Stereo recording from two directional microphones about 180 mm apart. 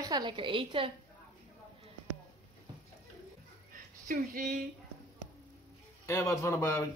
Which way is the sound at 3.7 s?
50° right (ahead or behind).